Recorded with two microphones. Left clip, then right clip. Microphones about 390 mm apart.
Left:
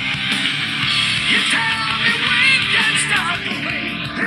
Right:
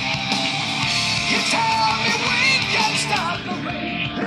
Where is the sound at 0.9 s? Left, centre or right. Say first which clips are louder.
Left 5 dB; centre.